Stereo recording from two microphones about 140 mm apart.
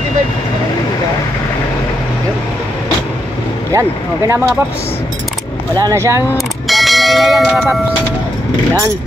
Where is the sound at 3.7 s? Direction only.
20° right (ahead or behind).